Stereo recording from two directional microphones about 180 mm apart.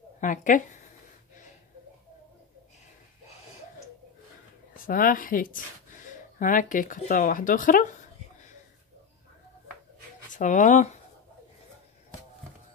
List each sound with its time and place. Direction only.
0.2 s speech: 45° left (ahead or behind)
4.7 s a woman's voice: 50° left (ahead or behind)
10.3 s speech: 45° left (ahead or behind)